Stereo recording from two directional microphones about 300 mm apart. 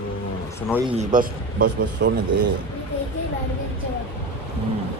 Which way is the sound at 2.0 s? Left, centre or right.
Right.